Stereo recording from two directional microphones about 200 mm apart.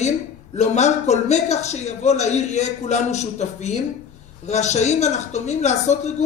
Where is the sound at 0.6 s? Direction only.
35° left (ahead or behind).